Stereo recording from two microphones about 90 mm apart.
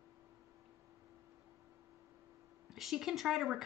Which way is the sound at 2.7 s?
5° right (ahead or behind).